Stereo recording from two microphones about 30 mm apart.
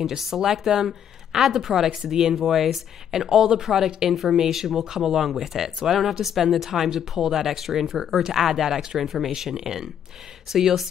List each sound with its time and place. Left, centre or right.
0.3 s speech: centre